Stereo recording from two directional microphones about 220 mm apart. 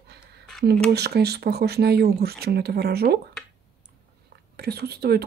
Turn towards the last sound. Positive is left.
turn(degrees=-45)  # may be behind; listen again after turning